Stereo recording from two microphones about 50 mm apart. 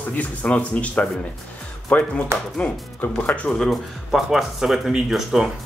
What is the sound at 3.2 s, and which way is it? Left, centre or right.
Speech, left.